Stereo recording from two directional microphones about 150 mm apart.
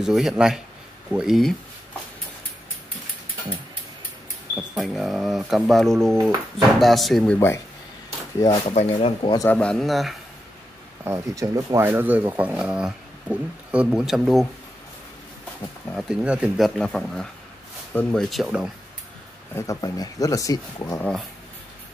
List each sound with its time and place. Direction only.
0.0 s speech: 5° right (ahead or behind)
4.6 s speech: centre (ahead or behind)
7.3 s speech: 20° left (ahead or behind)
8.6 s speech: 45° left (ahead or behind)
9.5 s speech: 5° left (ahead or behind)
11.1 s speech: 20° right (ahead or behind); by 14.5 s centre (ahead or behind)
16.1 s speech: 5° right (ahead or behind)
19.5 s speech: 20° left (ahead or behind)